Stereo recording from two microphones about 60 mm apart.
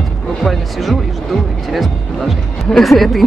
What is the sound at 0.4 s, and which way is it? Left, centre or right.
Speech, centre.